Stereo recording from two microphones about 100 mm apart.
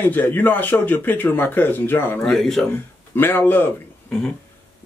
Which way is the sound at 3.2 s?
20° left (ahead or behind).